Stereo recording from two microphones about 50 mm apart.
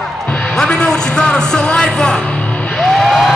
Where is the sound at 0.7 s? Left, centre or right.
Centre.